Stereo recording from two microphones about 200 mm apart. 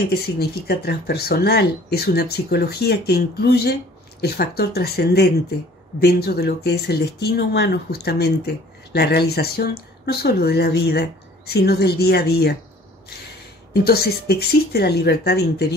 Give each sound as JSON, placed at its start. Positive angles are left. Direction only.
{"t": 0.1, "sound": "speech", "side_deg": 50}
{"t": 13.8, "sound": "speech", "side_deg": 50}